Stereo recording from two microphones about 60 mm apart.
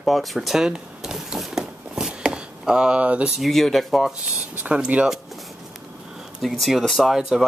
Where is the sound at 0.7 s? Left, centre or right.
Centre.